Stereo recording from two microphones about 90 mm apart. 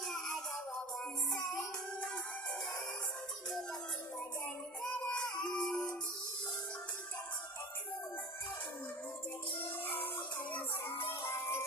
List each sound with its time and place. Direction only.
0.1 s music: centre (ahead or behind)
4.9 s music: 10° left (ahead or behind)
9.6 s music: 20° left (ahead or behind)